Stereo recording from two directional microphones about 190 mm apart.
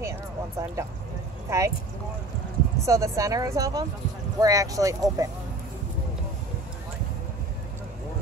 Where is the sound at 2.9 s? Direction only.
15° right (ahead or behind).